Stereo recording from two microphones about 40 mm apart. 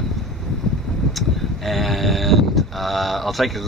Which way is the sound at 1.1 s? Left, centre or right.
Centre.